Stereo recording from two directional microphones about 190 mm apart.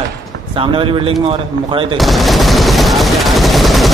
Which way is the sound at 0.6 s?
25° right (ahead or behind).